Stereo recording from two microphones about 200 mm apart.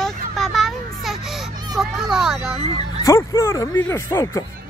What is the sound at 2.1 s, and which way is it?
Speech, 5° right (ahead or behind).